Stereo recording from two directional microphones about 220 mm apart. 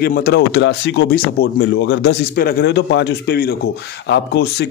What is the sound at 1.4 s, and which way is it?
Speech, 40° left (ahead or behind).